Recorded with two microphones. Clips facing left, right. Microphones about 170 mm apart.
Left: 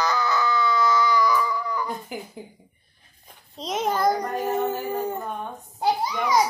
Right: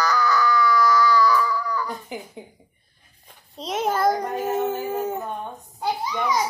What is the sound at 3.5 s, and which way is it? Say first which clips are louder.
Child singing: right 1 dB; centre (ahead or behind).